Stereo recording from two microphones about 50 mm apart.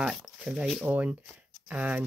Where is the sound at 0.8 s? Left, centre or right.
Right.